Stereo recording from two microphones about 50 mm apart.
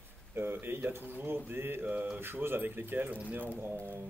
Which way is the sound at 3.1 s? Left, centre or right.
Right.